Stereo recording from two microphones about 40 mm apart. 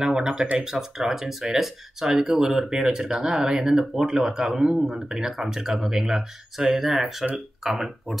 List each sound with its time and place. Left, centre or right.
0.0 s speech: right